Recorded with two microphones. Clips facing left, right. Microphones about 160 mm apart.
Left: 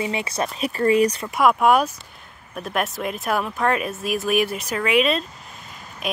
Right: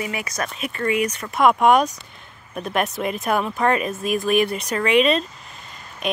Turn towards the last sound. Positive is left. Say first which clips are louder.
# right 3 dB
turn(degrees=5)  # may be behind; listen again after turning